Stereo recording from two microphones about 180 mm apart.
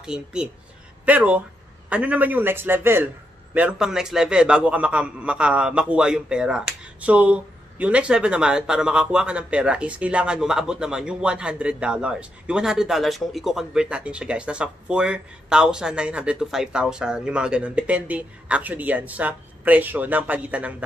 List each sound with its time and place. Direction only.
0.0 s a man's voice: 5° right (ahead or behind)